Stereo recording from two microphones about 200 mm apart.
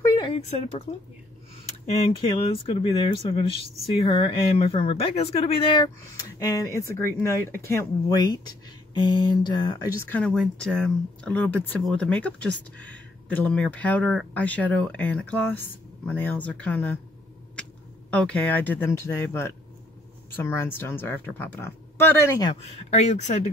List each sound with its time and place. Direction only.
0.0 s a sound: 25° left (ahead or behind)
1.9 s speech: 30° left (ahead or behind)
10.0 s speech: 5° left (ahead or behind)
18.1 s speech: 5° left (ahead or behind)
22.8 s speech: 35° left (ahead or behind)